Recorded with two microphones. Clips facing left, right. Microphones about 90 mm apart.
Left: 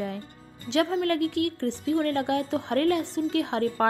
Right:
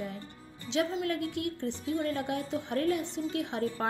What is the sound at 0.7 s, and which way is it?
A woman's voice, 65° left (ahead or behind).